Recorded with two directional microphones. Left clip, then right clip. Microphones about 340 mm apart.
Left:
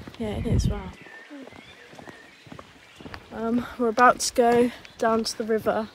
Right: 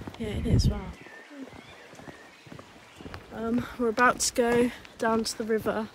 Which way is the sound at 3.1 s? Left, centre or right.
Centre.